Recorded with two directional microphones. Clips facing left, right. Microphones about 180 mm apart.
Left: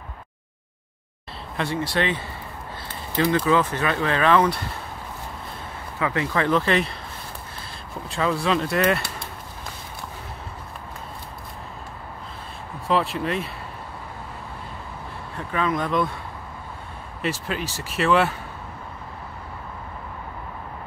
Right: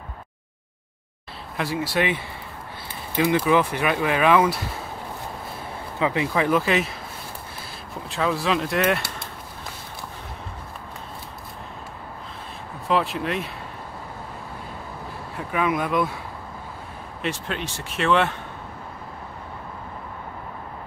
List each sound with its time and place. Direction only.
1.6 s speech: 5° right (ahead or behind)
5.9 s speech: 15° right (ahead or behind)
8.1 s speech: centre (ahead or behind)
12.8 s speech: centre (ahead or behind)
15.3 s speech: 10° right (ahead or behind)
17.2 s speech: 5° left (ahead or behind)